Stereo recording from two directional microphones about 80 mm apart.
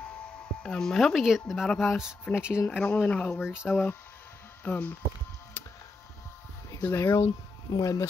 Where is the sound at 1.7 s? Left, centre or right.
Centre.